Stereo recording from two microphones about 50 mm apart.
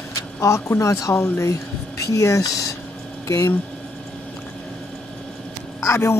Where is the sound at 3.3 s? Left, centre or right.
Left.